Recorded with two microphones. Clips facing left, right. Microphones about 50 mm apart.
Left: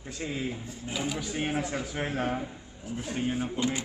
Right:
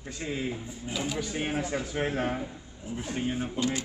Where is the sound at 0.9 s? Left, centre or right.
Centre.